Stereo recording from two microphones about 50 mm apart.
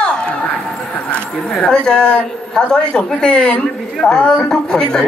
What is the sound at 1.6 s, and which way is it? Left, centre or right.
A man's voice, centre.